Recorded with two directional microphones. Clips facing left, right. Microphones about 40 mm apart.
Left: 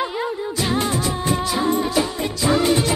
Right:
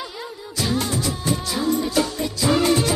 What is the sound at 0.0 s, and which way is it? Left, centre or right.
Music, left.